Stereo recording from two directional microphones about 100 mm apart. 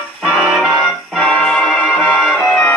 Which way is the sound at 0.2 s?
Centre (ahead or behind).